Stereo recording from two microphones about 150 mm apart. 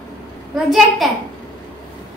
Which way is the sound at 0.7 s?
Centre (ahead or behind).